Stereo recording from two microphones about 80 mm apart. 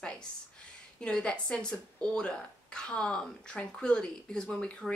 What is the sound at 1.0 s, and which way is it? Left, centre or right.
Speech, centre.